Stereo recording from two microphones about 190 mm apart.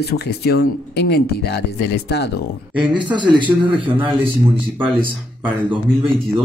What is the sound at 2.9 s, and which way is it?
Speech, 25° right (ahead or behind).